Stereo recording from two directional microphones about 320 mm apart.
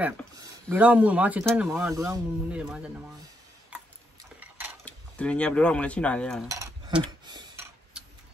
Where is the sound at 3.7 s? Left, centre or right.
Centre.